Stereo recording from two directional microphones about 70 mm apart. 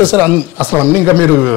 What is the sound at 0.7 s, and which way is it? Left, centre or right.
Speech, right.